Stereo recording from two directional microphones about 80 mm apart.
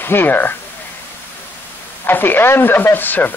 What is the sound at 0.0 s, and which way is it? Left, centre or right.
Speech, left.